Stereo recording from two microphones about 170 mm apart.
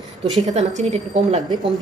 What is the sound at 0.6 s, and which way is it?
Speech, 40° right (ahead or behind).